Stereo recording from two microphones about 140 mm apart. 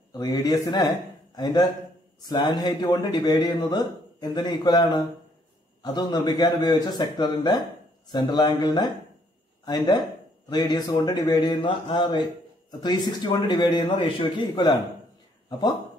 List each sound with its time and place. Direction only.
0.2 s a man's voice: 25° left (ahead or behind)